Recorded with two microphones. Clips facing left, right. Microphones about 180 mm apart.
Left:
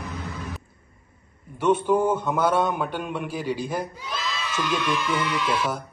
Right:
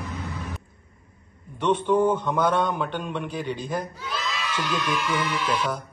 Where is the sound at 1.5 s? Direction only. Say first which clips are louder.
Left 1 dB; 10° left (ahead or behind).